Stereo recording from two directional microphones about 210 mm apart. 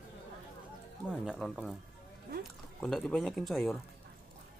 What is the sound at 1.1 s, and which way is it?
Speech, centre (ahead or behind).